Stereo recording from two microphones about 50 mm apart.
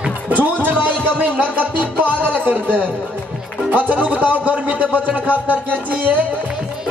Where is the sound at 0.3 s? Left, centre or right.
Right.